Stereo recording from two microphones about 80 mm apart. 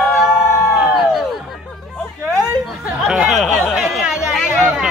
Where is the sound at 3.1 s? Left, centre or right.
Centre.